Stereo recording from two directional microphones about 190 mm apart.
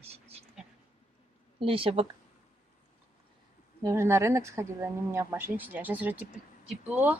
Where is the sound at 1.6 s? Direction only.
30° right (ahead or behind).